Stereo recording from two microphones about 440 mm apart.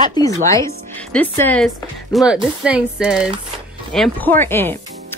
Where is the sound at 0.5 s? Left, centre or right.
Centre.